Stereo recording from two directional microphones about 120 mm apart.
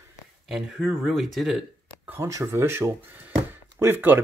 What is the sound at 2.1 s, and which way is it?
Speech, 25° right (ahead or behind).